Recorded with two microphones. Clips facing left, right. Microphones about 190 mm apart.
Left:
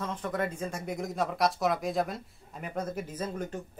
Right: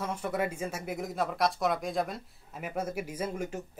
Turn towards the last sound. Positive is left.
turn(degrees=-10)  # may be behind; listen again after turning